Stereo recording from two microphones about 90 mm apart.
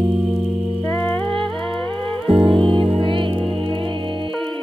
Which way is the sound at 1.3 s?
70° right (ahead or behind).